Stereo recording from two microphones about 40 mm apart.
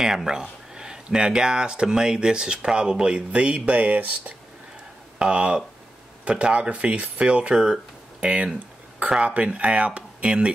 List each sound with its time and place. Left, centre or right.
0.0 s speech: centre; by 4.1 s right
5.2 s speech: right
7.5 s speech: centre
9.3 s speech: right